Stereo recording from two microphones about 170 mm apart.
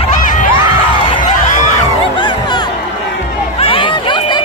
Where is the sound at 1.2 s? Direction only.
50° left (ahead or behind).